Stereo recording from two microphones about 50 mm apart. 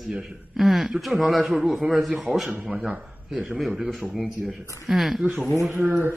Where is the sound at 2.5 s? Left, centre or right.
Right.